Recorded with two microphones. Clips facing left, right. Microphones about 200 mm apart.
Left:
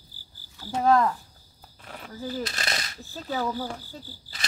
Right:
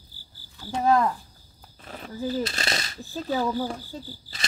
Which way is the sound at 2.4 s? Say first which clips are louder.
Right 3 dB; 30° right (ahead or behind).